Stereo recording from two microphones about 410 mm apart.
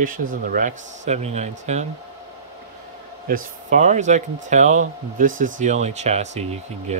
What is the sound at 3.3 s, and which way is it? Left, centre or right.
Speech, centre.